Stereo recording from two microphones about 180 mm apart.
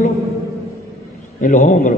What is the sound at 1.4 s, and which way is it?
Speech, 45° left (ahead or behind).